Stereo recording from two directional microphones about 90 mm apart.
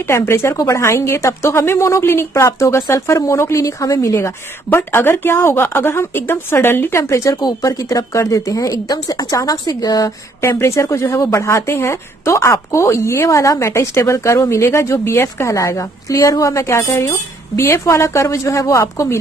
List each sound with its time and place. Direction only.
0.0 s a woman's voice: 30° left (ahead or behind)
4.6 s a woman's voice: 25° left (ahead or behind)
7.3 s a woman's voice: 45° left (ahead or behind)
10.6 s a woman's voice: 30° left (ahead or behind)